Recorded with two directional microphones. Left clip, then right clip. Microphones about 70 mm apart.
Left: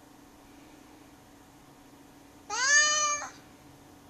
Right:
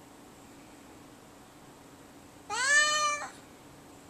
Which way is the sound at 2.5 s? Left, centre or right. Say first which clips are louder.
Left 1 dB; centre.